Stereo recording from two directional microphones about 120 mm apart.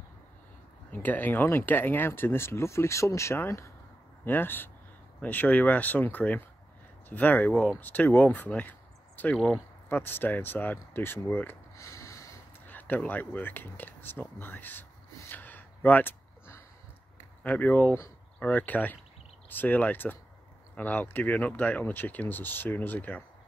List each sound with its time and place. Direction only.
0.9 s speech: 15° left (ahead or behind)